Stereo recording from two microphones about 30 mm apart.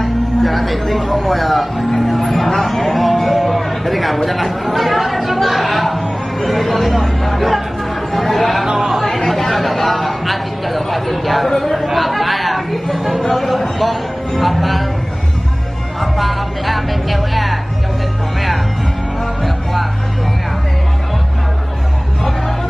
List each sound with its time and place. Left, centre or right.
0.0 s speech: centre
2.0 s a sound: centre
8.1 s speech: centre
8.6 s chatter: centre
9.0 s chatter: centre
11.5 s speech: centre
16.0 s speech: centre
19.4 s music: centre